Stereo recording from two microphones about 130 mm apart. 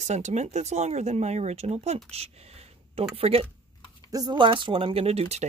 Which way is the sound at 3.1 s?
50° right (ahead or behind).